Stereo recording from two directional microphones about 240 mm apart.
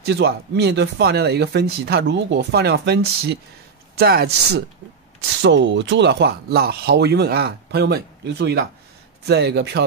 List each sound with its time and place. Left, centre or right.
0.0 s speech: right